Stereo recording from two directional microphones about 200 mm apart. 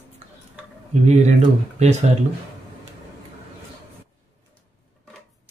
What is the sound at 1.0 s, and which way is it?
Speech, 30° right (ahead or behind).